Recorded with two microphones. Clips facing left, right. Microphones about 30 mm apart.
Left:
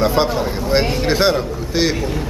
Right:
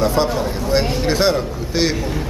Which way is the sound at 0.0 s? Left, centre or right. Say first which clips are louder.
Left 1 dB; left.